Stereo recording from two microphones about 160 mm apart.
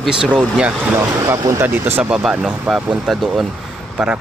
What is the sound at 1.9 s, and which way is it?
Speech, 5° right (ahead or behind).